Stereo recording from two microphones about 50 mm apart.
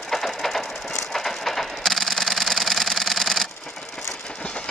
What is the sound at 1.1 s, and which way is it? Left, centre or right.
Camera, centre.